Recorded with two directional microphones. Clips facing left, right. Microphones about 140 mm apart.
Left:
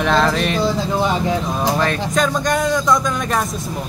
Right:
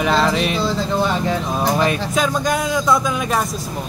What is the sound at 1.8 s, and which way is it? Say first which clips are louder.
Speech: even; 10° right (ahead or behind).